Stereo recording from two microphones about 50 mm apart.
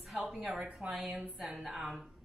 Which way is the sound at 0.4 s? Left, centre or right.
Centre.